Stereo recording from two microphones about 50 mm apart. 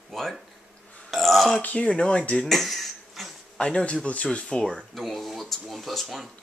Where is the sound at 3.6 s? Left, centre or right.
Left.